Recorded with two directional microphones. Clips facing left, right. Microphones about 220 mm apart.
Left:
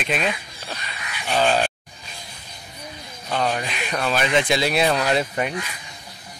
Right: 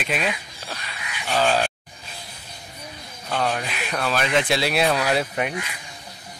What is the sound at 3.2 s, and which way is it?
Speech, centre (ahead or behind).